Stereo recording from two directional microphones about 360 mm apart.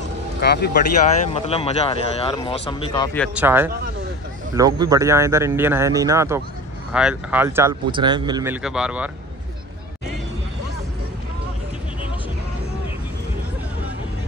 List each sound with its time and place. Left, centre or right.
0.4 s speech: left
1.3 s speech: centre
3.3 s a man's voice: centre